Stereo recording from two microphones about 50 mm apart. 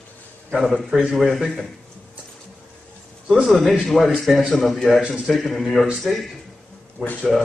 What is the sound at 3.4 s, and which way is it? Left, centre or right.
A man's voice, centre.